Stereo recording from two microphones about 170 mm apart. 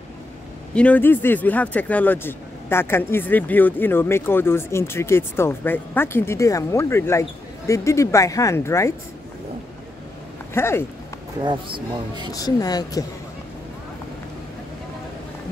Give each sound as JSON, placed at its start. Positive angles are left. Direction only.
{"t": 0.7, "sound": "speech", "side_deg": 10}
{"t": 10.5, "sound": "speech", "side_deg": 15}
{"t": 11.4, "sound": "speech", "side_deg": -25}
{"t": 12.3, "sound": "speech", "side_deg": 20}